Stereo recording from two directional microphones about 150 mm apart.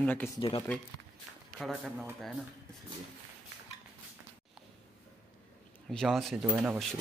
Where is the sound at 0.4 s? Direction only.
35° left (ahead or behind).